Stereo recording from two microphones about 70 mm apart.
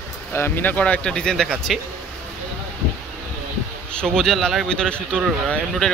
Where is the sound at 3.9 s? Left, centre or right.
Centre.